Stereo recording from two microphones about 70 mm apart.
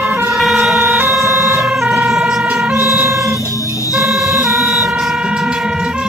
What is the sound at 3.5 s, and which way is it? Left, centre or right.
Music, left.